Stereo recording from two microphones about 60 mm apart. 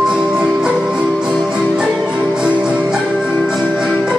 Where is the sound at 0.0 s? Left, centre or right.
Centre.